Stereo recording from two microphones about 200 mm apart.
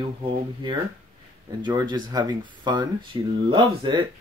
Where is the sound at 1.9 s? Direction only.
20° right (ahead or behind).